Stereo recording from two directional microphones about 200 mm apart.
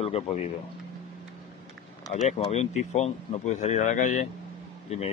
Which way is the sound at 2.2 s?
35° left (ahead or behind).